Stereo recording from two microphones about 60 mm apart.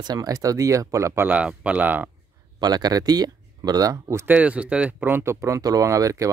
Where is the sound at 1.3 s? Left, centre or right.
Right.